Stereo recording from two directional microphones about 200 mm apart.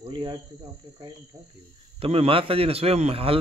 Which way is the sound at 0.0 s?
25° right (ahead or behind).